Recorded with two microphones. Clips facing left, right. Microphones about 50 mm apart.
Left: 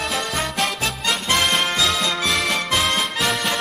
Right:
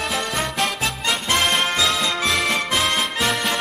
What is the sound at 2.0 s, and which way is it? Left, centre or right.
Music, centre.